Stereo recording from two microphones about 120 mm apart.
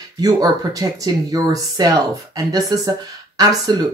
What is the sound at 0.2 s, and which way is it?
Speech, 30° right (ahead or behind).